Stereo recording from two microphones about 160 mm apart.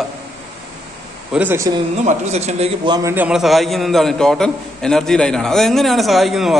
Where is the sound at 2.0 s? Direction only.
40° right (ahead or behind).